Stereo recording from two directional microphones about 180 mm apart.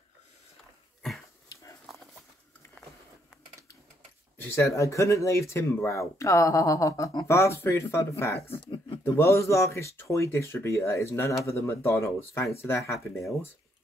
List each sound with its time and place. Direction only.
1.5 s dog: 15° left (ahead or behind)
4.4 s speech: 15° left (ahead or behind)
8.4 s a sound: 30° left (ahead or behind)
9.0 s speech: 15° left (ahead or behind)